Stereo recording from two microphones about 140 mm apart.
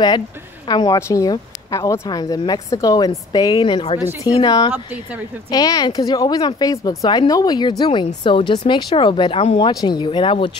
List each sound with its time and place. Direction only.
0.7 s speech: 30° left (ahead or behind)
3.5 s speech: 40° left (ahead or behind)